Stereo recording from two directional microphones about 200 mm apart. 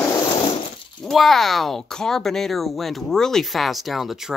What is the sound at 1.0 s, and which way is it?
Speech, centre (ahead or behind).